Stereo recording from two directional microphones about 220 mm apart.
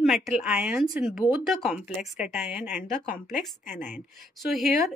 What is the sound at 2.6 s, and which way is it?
Speech, 35° left (ahead or behind).